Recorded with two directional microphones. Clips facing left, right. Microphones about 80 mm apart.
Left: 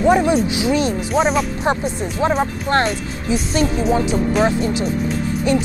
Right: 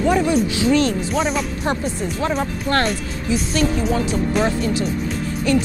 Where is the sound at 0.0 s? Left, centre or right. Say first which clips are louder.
Left 3 dB; centre.